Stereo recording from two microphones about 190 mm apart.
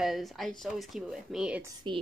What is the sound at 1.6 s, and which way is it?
Speech, 25° right (ahead or behind).